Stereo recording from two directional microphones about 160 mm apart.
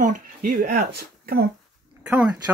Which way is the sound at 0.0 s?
65° right (ahead or behind).